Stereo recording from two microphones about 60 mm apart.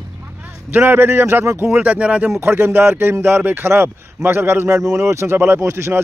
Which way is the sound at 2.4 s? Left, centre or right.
Right.